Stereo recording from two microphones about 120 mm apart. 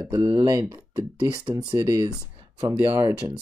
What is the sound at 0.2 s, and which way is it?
Speech, 50° right (ahead or behind).